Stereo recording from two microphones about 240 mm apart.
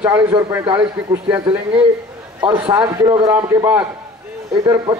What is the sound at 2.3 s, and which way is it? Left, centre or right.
A man's voice, centre.